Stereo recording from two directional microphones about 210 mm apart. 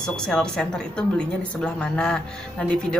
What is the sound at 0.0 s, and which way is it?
A woman's voice, 5° left (ahead or behind).